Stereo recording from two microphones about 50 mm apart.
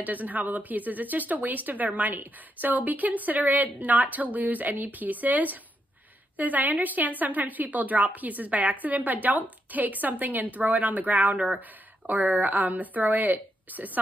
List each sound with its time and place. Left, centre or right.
0.0 s speech: right